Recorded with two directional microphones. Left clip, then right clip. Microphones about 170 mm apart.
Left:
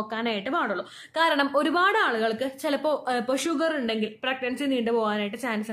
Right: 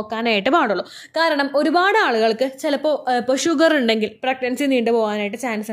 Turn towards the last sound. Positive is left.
turn(degrees=-25)  # may be behind; listen again after turning